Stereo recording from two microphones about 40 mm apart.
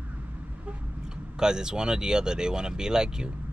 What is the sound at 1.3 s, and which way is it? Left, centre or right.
Speech, centre.